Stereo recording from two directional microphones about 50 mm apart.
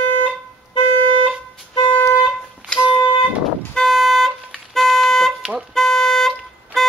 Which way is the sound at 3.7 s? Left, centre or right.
Centre.